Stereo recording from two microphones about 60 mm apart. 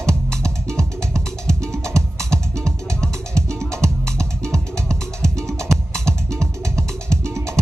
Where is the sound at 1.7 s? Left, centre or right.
Right.